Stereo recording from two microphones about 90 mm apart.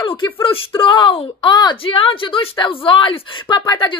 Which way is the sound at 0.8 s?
70° left (ahead or behind).